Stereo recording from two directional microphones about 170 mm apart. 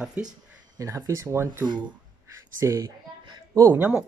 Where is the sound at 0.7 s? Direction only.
20° right (ahead or behind).